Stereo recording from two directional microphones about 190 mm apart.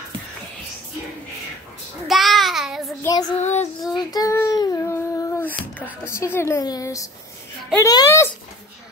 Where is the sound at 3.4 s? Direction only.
35° left (ahead or behind).